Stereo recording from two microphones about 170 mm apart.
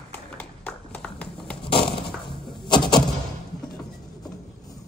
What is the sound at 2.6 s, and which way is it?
Vehicle, 25° left (ahead or behind).